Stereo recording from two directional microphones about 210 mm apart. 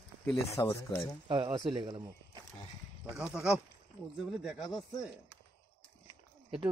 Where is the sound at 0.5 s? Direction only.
15° left (ahead or behind).